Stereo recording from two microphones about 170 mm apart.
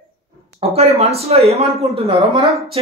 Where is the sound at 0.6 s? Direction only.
35° right (ahead or behind).